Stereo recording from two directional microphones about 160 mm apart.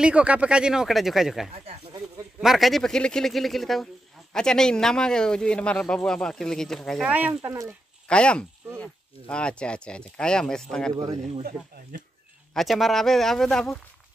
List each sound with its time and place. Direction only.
0.0 s speech: 5° right (ahead or behind)
1.5 s a sound: 40° right (ahead or behind)
2.4 s speech: centre (ahead or behind)
7.1 s speech: 10° right (ahead or behind)
8.1 s speech: 5° left (ahead or behind)
12.5 s speech: centre (ahead or behind)